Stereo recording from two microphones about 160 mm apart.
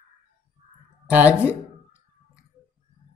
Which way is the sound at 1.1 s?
10° right (ahead or behind).